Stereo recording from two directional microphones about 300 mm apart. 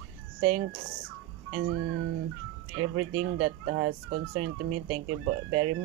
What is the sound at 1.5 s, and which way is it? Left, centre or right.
Speech, right.